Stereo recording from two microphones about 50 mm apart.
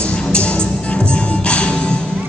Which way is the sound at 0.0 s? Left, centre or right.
Left.